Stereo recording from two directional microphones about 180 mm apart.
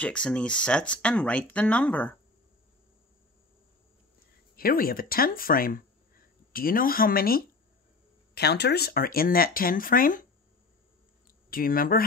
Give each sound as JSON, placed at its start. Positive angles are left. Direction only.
{"t": 0.0, "sound": "speech", "side_deg": 5}
{"t": 4.6, "sound": "speech", "side_deg": 55}
{"t": 8.4, "sound": "speech", "side_deg": 65}
{"t": 11.5, "sound": "speech", "side_deg": 55}